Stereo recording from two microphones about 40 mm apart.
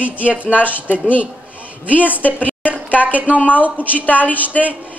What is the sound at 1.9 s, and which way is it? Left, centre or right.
Speech, left.